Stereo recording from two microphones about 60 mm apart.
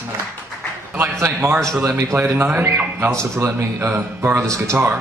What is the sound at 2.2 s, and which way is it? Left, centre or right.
Speech, right.